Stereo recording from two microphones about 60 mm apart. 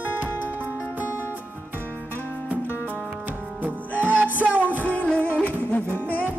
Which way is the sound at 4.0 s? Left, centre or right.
Right.